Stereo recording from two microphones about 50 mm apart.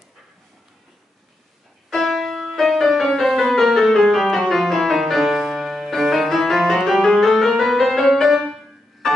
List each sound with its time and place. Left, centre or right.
1.9 s music: centre